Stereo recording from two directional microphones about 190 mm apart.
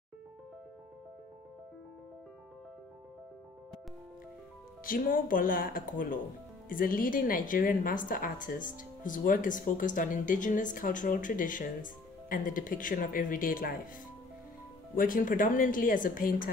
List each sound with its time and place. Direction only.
4.8 s a woman's voice: 50° left (ahead or behind)
15.0 s a woman's voice: 45° left (ahead or behind)